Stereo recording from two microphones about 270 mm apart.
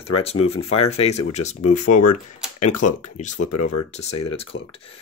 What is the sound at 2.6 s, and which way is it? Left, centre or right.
Speech, left.